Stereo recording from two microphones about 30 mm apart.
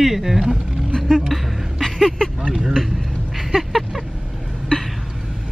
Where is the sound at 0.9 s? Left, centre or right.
Centre.